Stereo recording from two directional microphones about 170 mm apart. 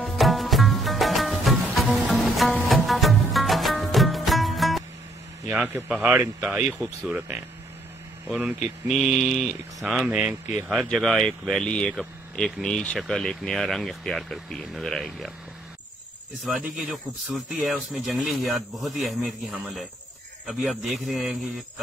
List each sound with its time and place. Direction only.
0.0 s music: centre (ahead or behind)
5.5 s speech: 10° right (ahead or behind)
16.4 s speech: 5° right (ahead or behind)